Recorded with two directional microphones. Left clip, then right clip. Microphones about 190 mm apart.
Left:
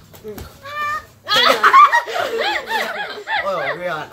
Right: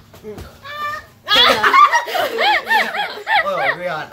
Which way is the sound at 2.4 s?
60° right (ahead or behind).